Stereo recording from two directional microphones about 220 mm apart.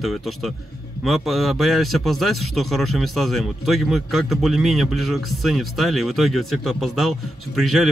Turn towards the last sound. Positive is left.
turn(degrees=0)  # may be behind; listen again after turning